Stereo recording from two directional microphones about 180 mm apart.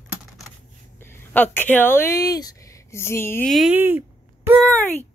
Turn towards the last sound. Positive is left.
turn(degrees=5)  # may be behind; listen again after turning